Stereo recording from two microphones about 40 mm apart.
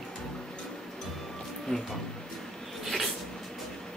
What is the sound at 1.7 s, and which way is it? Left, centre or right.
Music, left.